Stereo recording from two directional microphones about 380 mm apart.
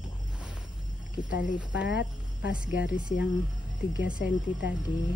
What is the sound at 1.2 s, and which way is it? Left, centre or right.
Speech, centre.